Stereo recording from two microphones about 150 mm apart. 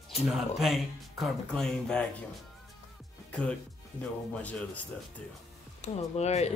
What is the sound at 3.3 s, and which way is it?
Speech, 10° left (ahead or behind).